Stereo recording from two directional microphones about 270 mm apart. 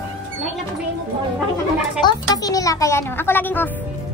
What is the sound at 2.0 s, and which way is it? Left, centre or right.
Speech, centre.